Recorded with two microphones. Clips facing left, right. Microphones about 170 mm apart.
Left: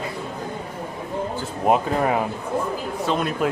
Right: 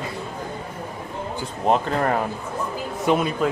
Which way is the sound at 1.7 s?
5° left (ahead or behind).